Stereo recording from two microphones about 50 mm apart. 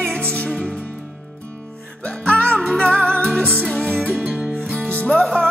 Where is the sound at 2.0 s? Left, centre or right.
Centre.